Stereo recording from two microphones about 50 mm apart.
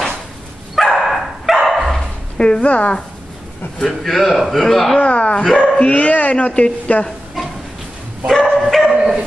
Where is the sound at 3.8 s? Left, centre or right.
Centre.